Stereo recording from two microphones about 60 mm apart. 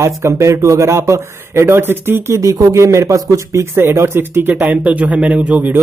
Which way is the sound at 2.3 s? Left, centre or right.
Right.